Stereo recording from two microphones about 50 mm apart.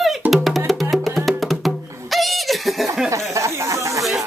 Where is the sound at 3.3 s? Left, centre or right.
Right.